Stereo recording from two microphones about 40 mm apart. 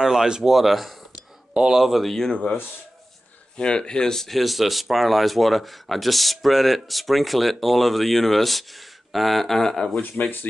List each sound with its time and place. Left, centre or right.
0.0 s speech: centre
1.5 s speech: right
1.8 s speech: centre
2.0 s speech: centre
3.5 s speech: left
4.4 s speech: centre
10.2 s speech: left